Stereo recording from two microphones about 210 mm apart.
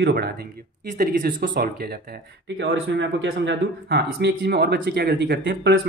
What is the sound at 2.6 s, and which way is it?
Speech, 60° right (ahead or behind).